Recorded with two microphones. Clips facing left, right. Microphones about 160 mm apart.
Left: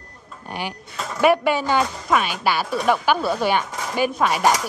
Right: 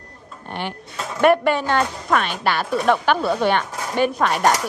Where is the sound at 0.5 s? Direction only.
5° left (ahead or behind).